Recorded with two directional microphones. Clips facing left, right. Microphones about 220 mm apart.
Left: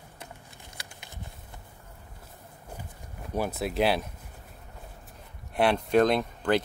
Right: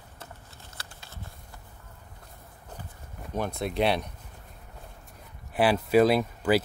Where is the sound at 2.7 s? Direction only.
5° left (ahead or behind).